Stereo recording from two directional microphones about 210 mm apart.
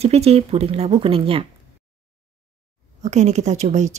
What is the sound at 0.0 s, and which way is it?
Speech, 30° right (ahead or behind).